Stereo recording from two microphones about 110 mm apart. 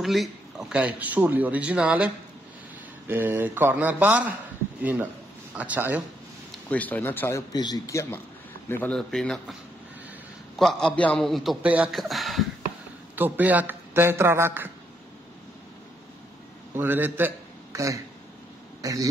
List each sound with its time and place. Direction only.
0.0 s a man's voice: centre (ahead or behind)
3.1 s a man's voice: 20° right (ahead or behind)
5.6 s a man's voice: 15° right (ahead or behind)
6.7 s speech: 15° left (ahead or behind)
7.5 s speech: 35° left (ahead or behind); by 8.9 s 20° left (ahead or behind)
8.9 s a man's voice: 5° left (ahead or behind)
10.6 s a man's voice: centre (ahead or behind)
11.6 s a man's voice: 15° right (ahead or behind)
11.9 s a man's voice: centre (ahead or behind)
13.1 s a man's voice: 15° right (ahead or behind)
16.7 s a man's voice: 20° right (ahead or behind)
17.7 s a man's voice: 30° right (ahead or behind)